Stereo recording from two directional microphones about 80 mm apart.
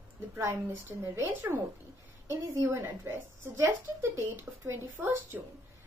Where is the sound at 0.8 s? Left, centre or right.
Right.